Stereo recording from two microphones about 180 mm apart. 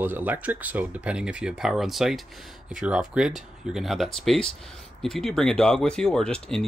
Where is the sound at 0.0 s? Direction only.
10° right (ahead or behind).